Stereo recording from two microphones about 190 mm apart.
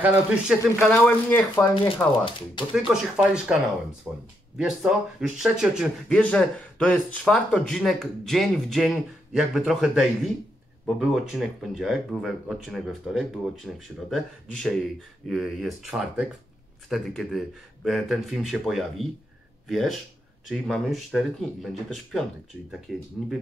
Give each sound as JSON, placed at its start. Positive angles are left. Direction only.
{"t": 0.0, "sound": "speech", "side_deg": -5}
{"t": 0.9, "sound": "speech", "side_deg": 10}
{"t": 2.1, "sound": "speech", "side_deg": 25}
{"t": 2.9, "sound": "speech", "side_deg": -5}